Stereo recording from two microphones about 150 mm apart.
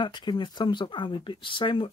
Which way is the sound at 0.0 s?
30° left (ahead or behind).